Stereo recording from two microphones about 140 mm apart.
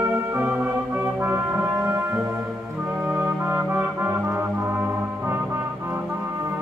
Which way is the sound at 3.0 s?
15° right (ahead or behind).